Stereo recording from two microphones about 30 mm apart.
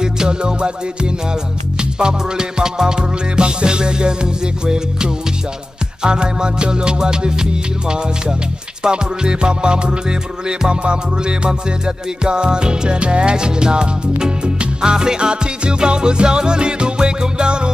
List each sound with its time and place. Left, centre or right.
0.0 s music: right
1.8 s music: right
6.0 s music: right
8.8 s music: right